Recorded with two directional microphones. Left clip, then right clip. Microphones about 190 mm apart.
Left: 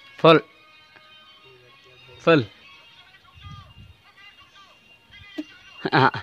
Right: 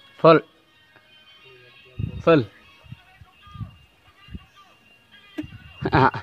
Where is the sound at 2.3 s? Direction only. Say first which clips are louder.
Right 1 dB; 5° right (ahead or behind).